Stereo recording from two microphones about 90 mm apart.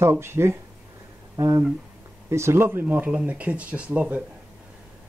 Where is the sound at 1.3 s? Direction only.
40° right (ahead or behind).